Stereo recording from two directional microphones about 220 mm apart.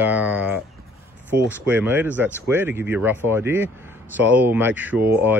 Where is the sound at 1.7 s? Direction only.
10° right (ahead or behind).